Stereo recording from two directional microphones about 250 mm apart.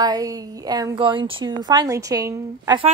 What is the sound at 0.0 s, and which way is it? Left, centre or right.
A woman's voice, centre.